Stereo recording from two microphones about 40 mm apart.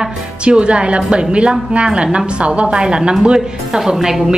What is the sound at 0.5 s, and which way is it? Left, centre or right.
A woman's voice, right.